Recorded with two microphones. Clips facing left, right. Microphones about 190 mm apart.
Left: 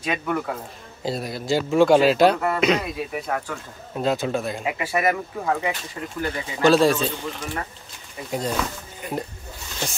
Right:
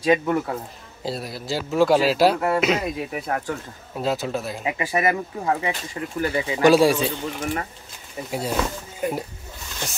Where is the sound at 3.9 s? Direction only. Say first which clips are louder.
Left 2 dB; centre (ahead or behind).